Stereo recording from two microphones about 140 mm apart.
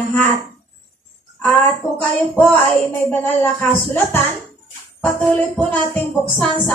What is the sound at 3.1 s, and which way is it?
Speech, 15° left (ahead or behind).